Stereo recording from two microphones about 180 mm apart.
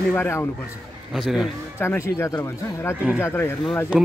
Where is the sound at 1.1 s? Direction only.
Centre (ahead or behind).